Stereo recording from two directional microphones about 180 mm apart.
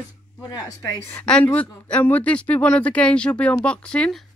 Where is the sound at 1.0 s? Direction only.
10° left (ahead or behind).